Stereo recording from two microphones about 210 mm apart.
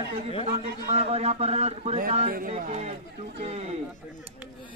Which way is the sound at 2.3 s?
40° right (ahead or behind).